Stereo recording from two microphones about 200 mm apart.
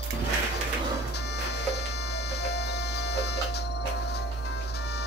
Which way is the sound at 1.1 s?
55° left (ahead or behind).